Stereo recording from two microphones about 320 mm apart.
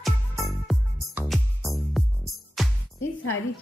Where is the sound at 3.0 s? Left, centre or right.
Left.